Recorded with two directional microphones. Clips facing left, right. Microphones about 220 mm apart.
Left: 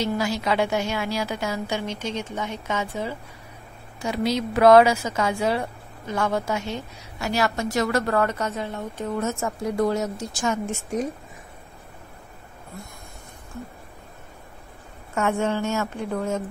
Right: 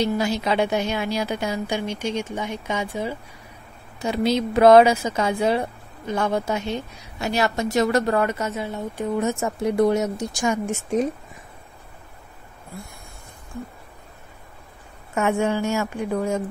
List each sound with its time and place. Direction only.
0.2 s a woman's voice: 20° right (ahead or behind)
4.0 s a woman's voice: 25° right (ahead or behind)
15.1 s a woman's voice: 15° right (ahead or behind)